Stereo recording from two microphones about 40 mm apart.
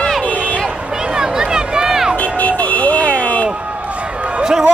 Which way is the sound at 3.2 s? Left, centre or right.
Left.